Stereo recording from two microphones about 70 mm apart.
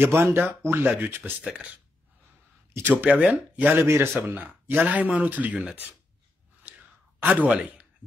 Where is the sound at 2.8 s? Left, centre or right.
Right.